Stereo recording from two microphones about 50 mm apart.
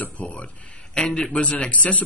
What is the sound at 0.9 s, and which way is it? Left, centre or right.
A man's voice, centre.